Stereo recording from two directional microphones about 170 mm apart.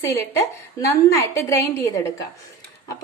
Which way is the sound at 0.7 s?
20° left (ahead or behind).